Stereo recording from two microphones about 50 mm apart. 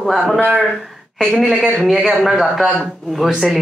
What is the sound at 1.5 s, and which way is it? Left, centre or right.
Speech, centre.